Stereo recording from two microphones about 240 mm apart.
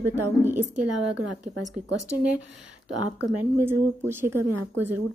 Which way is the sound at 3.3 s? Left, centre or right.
Centre.